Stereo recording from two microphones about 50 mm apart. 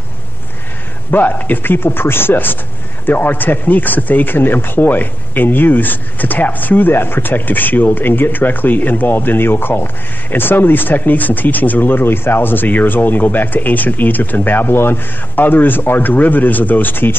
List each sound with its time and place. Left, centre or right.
1.1 s speech: left
12.0 s speech: left